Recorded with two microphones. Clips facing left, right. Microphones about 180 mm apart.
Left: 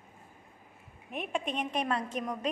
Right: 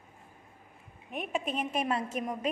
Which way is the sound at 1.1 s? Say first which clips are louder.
Right 1 dB; centre (ahead or behind).